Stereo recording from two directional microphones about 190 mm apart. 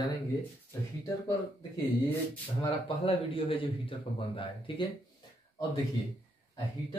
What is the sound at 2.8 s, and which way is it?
Speech, 30° left (ahead or behind).